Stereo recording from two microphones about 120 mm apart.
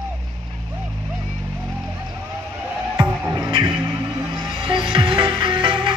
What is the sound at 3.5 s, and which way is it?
Music, 35° right (ahead or behind).